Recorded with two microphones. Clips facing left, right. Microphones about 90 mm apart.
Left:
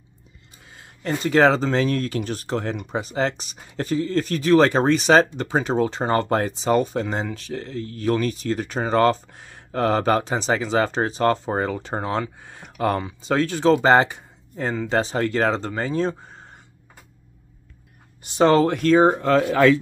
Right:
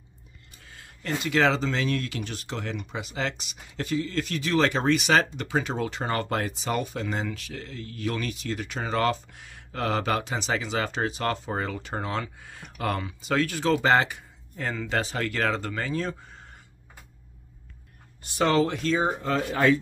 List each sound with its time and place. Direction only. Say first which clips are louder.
0.7 s a sound: left 2 dB; 20° left (ahead or behind)
1.0 s speech: left 6 dB; 40° left (ahead or behind)
18.2 s speech: left 7 dB; 25° left (ahead or behind)
18.5 s speech: left 6 dB; 50° left (ahead or behind); by 19.8 s 90° left